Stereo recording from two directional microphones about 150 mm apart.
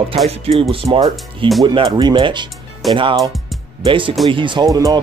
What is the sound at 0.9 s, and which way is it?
Speech, 25° right (ahead or behind).